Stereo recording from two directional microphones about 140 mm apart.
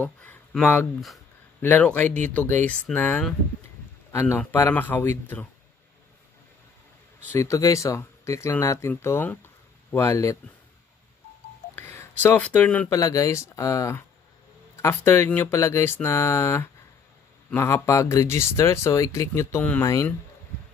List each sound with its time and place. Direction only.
0.0 s speech: 10° left (ahead or behind)
7.3 s speech: 20° left (ahead or behind)
11.7 s a sound: 15° left (ahead or behind)
12.9 s speech: 25° left (ahead or behind)